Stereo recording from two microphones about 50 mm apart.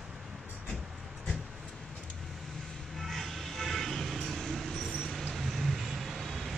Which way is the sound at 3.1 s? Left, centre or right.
Centre.